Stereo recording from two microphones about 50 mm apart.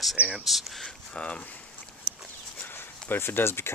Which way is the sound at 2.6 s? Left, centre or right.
Left.